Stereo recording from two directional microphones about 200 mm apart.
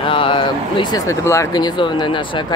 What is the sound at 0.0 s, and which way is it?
Speech, 25° left (ahead or behind).